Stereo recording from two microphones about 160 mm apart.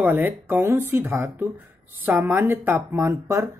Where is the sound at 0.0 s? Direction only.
10° right (ahead or behind).